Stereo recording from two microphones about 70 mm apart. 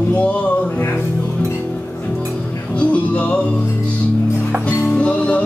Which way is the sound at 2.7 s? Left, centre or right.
Centre.